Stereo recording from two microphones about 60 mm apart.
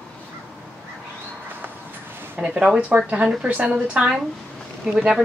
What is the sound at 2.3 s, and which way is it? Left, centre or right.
A woman's voice, right.